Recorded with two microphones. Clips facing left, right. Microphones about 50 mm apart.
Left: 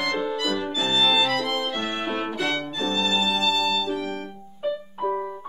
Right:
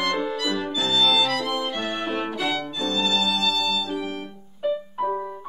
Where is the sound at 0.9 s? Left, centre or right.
Centre.